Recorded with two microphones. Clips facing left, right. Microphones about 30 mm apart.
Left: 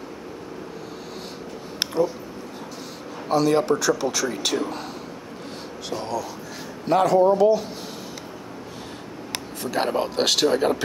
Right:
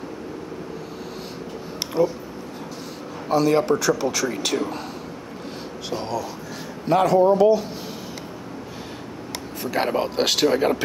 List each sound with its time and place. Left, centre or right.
3.3 s speech: centre
5.9 s speech: centre
6.9 s speech: centre
9.7 s speech: centre